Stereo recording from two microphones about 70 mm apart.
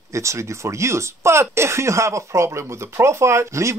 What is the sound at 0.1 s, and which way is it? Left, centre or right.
Speech, right.